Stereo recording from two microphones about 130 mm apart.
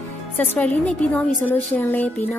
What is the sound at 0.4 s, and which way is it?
A woman's voice, 10° left (ahead or behind).